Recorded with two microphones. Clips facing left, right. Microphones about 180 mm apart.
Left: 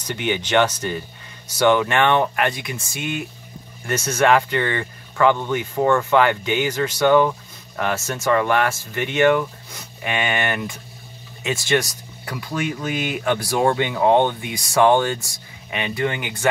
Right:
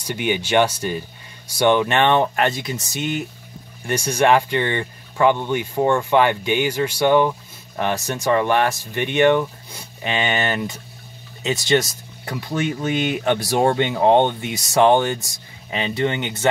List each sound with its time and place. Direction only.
0.0 s speech: 15° right (ahead or behind)
1.7 s speech: 25° right (ahead or behind)
3.8 s speech: 15° right (ahead or behind)